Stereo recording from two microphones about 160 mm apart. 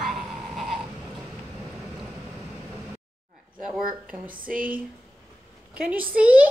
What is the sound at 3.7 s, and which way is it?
Speech, 5° right (ahead or behind).